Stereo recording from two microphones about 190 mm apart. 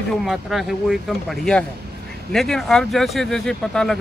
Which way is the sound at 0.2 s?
Centre (ahead or behind).